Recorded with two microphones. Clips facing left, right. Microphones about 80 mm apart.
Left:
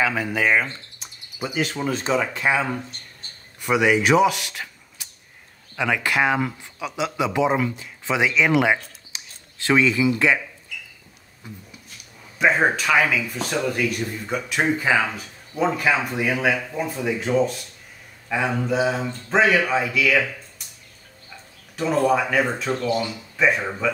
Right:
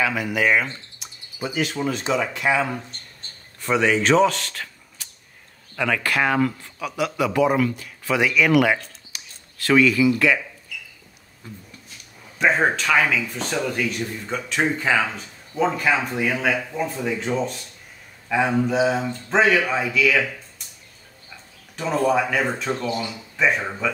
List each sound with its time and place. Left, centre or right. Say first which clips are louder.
0.0 s speech: even; left
3.6 s a man's voice: left 1 dB; centre
11.4 s speech: even; centre
18.3 s speech: right 2 dB; centre
21.7 s speech: left 1 dB; centre
22.7 s speech: left 1 dB; centre
23.3 s speech: left 1 dB; centre